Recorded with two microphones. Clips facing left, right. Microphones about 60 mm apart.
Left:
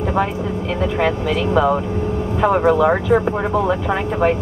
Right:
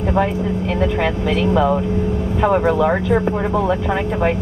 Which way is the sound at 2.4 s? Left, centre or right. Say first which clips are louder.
Left 1 dB; left.